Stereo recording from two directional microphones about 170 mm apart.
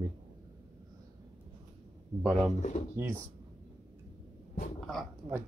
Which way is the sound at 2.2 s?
5° right (ahead or behind).